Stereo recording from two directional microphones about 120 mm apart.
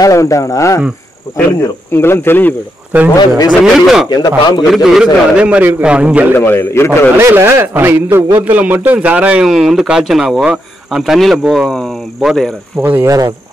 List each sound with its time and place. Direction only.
0.0 s speech: 25° left (ahead or behind)
2.9 s a man's voice: 15° right (ahead or behind)
3.6 s a man's voice: centre (ahead or behind)
4.1 s a man's voice: 35° left (ahead or behind)
4.7 s a man's voice: centre (ahead or behind)
6.3 s speech: 20° left (ahead or behind)
7.2 s a man's voice: 20° right (ahead or behind); by 12.4 s centre (ahead or behind)
12.8 s a man's voice: 15° right (ahead or behind)